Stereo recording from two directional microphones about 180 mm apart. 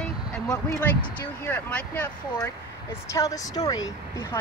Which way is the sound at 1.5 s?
10° left (ahead or behind).